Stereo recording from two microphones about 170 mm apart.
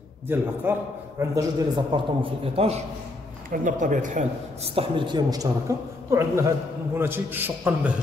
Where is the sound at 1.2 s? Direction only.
20° right (ahead or behind); by 2.8 s 35° right (ahead or behind).